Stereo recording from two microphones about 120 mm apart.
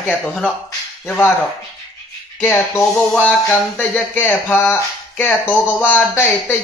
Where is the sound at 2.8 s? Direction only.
Centre (ahead or behind).